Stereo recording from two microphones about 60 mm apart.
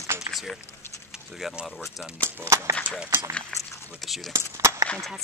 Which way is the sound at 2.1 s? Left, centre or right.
Right.